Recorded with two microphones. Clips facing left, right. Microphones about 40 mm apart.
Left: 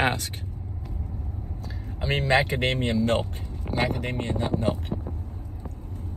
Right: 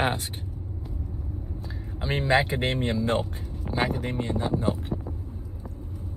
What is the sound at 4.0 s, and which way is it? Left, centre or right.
Speech, left.